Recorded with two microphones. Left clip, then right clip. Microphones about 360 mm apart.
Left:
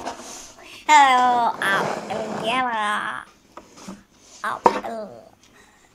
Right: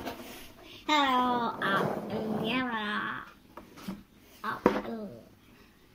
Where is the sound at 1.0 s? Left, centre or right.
Centre.